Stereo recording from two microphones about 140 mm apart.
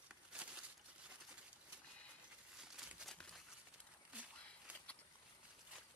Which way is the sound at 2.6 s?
5° right (ahead or behind).